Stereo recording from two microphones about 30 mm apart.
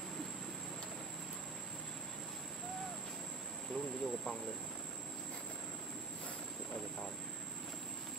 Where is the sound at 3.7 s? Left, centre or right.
Centre.